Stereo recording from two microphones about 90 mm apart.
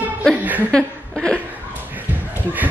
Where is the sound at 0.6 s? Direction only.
10° left (ahead or behind).